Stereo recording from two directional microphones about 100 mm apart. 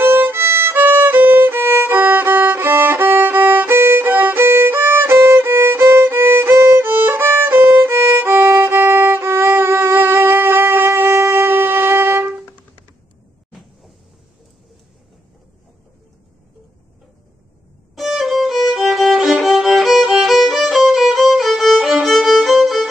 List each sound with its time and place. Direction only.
0.0 s violin: 20° right (ahead or behind)
13.5 s vehicle: centre (ahead or behind)
17.9 s violin: centre (ahead or behind)